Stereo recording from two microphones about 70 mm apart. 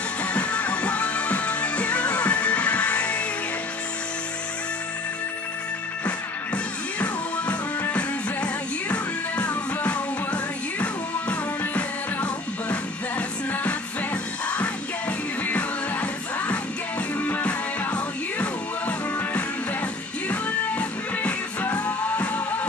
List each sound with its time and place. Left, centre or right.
0.2 s music: centre
6.0 s music: centre
14.5 s music: centre
20.2 s music: left